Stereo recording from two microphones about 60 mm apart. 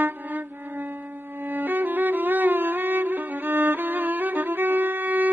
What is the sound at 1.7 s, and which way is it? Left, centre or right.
Music, right.